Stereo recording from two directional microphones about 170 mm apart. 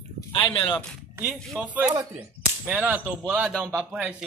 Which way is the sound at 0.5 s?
30° left (ahead or behind).